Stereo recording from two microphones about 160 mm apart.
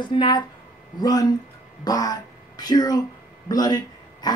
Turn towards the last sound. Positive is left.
turn(degrees=25)  # may be behind; listen again after turning